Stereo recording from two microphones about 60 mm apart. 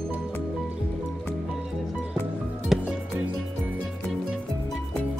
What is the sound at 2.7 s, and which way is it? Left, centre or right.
Music, centre.